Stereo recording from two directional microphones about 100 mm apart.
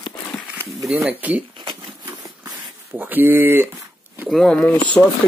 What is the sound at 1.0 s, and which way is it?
Speech, 15° right (ahead or behind).